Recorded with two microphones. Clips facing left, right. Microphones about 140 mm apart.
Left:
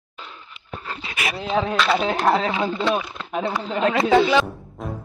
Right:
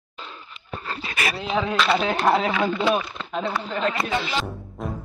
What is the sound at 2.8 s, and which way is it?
Speech, centre (ahead or behind).